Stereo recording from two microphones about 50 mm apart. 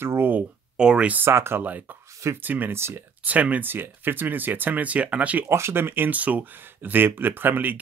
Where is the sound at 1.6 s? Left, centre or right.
Right.